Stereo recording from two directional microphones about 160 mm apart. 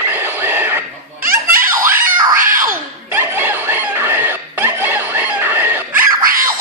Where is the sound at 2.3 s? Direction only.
60° right (ahead or behind).